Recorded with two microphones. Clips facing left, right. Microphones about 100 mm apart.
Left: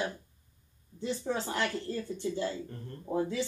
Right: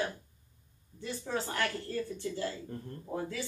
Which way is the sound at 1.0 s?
20° left (ahead or behind).